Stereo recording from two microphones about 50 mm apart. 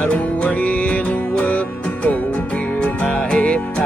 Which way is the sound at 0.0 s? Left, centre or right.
Left.